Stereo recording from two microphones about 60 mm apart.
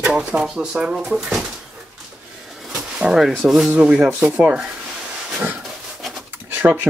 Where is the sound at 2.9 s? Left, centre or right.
Centre.